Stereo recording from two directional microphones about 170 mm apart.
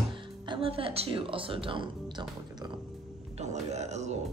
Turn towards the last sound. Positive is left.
turn(degrees=-40)  # may be behind; listen again after turning